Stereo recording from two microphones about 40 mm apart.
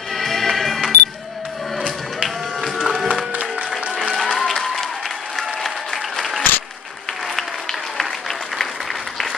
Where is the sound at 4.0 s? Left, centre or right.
Centre.